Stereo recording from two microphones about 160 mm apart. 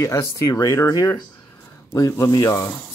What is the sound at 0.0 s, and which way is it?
Speech, 20° left (ahead or behind).